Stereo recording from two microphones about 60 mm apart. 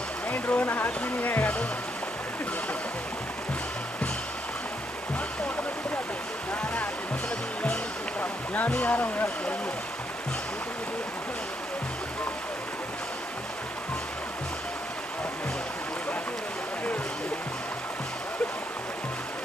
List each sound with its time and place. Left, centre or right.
0.3 s speech: left
8.2 s speech: left